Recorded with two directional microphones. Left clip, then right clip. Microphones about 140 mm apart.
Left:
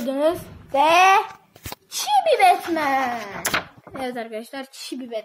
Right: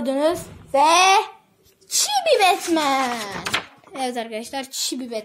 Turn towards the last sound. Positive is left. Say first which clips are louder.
# right 4 dB
turn(degrees=-25)  # may be behind; listen again after turning